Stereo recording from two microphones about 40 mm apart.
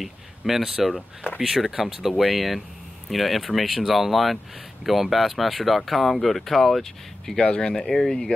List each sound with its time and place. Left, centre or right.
0.0 s speech: centre
7.3 s speech: left
7.7 s speech: centre